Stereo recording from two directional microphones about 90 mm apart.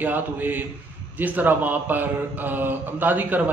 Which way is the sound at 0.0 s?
20° right (ahead or behind).